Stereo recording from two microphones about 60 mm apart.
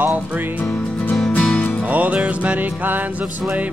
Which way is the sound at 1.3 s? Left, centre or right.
Centre.